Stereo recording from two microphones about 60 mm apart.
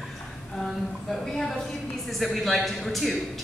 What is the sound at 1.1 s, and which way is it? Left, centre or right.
A woman's voice, centre.